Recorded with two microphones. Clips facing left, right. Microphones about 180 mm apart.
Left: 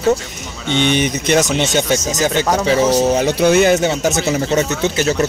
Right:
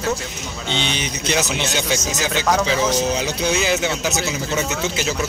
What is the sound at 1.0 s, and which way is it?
Speech, 55° left (ahead or behind).